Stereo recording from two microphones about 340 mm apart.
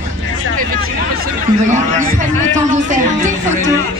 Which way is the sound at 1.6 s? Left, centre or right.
Right.